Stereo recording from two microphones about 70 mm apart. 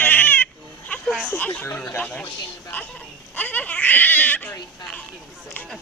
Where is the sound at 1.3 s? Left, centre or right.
Left.